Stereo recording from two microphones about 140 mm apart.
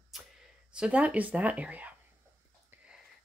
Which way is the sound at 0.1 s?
Centre (ahead or behind).